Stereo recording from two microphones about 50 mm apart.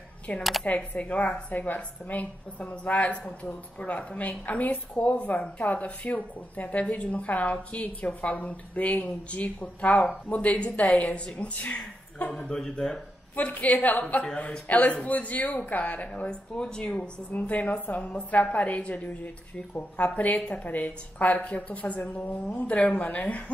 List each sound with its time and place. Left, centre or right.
0.4 s speech: centre
0.7 s a woman's voice: left
12.3 s speech: centre
13.4 s a woman's voice: left
16.3 s speech: centre
17.3 s a woman's voice: left